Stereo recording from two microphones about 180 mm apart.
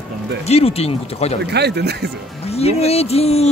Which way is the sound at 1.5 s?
65° right (ahead or behind).